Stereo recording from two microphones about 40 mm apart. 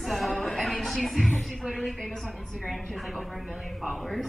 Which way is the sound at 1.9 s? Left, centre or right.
Centre.